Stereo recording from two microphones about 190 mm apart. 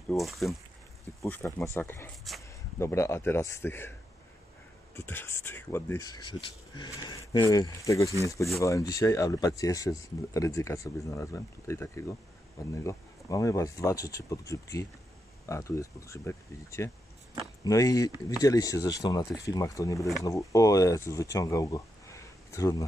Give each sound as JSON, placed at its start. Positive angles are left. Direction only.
{"t": 0.1, "sound": "speech", "side_deg": 0}
{"t": 1.2, "sound": "speech", "side_deg": 15}
{"t": 2.3, "sound": "speech", "side_deg": 0}
{"t": 2.8, "sound": "speech", "side_deg": 15}
{"t": 4.9, "sound": "speech", "side_deg": 10}